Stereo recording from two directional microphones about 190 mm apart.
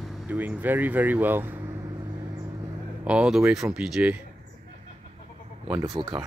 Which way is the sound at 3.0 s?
5° right (ahead or behind).